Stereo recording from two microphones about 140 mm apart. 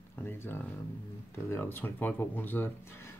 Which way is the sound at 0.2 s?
15° left (ahead or behind).